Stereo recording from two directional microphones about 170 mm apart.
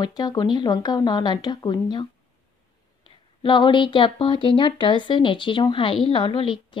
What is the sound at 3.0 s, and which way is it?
Speech, 25° left (ahead or behind).